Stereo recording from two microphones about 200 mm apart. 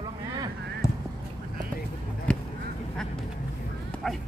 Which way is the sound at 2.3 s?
5° left (ahead or behind).